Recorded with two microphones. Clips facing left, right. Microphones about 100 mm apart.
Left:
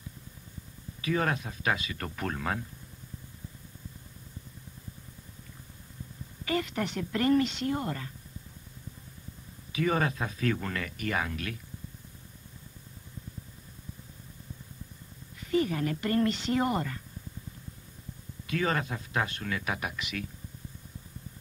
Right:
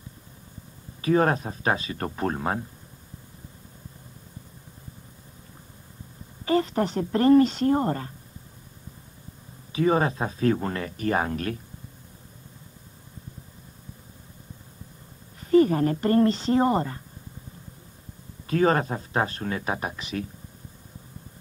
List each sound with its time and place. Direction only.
1.0 s speech: 35° right (ahead or behind)
6.4 s speech: 35° right (ahead or behind)
9.7 s speech: 30° right (ahead or behind)
15.5 s speech: 40° right (ahead or behind)
18.5 s speech: 40° right (ahead or behind)